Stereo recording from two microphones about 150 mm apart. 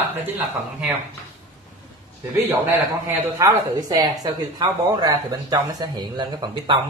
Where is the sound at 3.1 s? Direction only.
20° right (ahead or behind).